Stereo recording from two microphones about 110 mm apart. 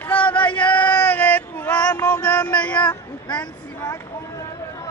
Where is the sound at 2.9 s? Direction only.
40° left (ahead or behind).